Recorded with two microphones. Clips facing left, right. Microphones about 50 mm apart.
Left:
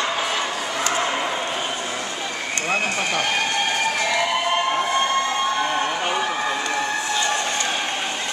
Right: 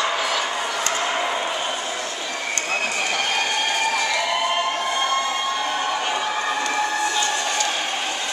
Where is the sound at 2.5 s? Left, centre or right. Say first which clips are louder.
Left 4 dB; centre.